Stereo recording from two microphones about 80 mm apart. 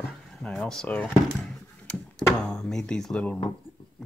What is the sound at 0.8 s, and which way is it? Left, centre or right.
Speech, centre.